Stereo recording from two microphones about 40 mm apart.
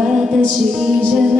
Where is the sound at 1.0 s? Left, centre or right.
Right.